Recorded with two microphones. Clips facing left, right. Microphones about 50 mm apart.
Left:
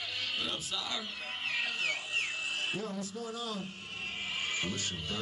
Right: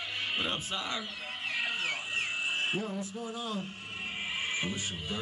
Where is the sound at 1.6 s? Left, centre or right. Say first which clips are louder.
Right 1 dB; right.